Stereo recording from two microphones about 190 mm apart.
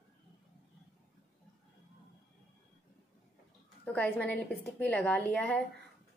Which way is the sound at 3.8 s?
5° left (ahead or behind).